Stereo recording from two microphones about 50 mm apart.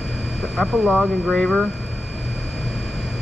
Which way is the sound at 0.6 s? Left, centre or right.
Centre.